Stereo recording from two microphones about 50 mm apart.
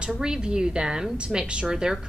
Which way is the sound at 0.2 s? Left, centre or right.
Centre.